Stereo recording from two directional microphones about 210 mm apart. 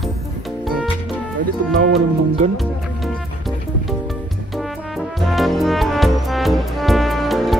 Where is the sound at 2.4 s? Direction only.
35° right (ahead or behind).